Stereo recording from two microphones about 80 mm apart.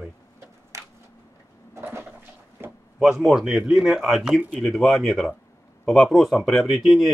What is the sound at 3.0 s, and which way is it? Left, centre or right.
Speech, centre.